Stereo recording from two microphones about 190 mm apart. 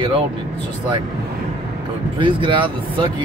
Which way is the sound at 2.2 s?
25° right (ahead or behind).